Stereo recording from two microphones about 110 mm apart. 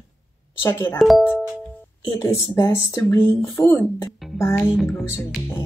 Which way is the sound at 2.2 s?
25° left (ahead or behind).